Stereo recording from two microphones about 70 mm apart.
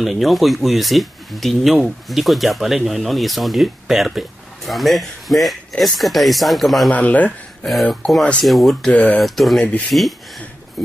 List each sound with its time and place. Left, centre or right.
0.0 s speech: centre
6.9 s speech: left
8.5 s speech: centre
8.9 s speech: centre
9.2 s speech: centre